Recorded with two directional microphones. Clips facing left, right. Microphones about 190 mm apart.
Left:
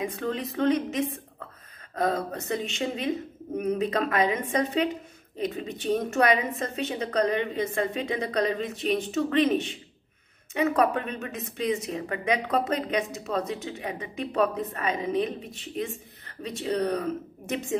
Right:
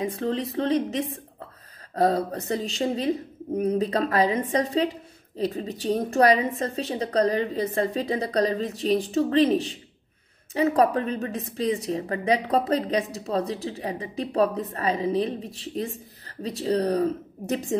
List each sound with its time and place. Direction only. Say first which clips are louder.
0.0 s a woman's voice: right 3 dB; 35° right (ahead or behind)